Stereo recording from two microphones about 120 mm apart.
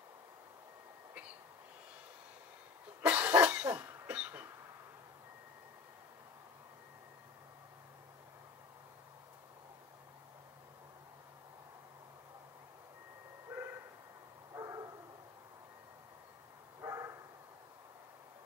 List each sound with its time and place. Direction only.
3.0 s cough: 15° right (ahead or behind)
13.5 s bow-wow: 15° right (ahead or behind)
14.5 s bow-wow: 30° right (ahead or behind)
16.8 s bow-wow: 25° right (ahead or behind)